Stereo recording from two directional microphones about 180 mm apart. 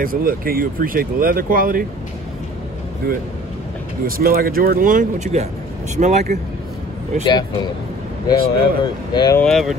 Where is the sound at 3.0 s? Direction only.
55° right (ahead or behind).